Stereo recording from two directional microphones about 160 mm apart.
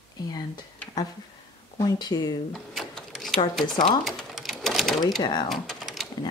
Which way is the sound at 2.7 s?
Centre (ahead or behind).